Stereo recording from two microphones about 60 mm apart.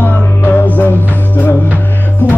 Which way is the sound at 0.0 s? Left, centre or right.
Left.